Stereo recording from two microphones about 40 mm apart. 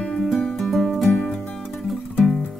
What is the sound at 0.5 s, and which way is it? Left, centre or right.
Music, centre.